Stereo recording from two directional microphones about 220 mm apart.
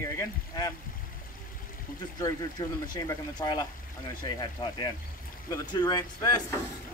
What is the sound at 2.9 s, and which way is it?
Speech, 15° left (ahead or behind).